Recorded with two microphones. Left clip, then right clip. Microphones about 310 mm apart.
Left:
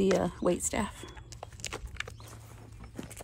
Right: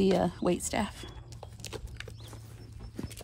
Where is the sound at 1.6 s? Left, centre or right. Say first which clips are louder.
Left 4 dB; left.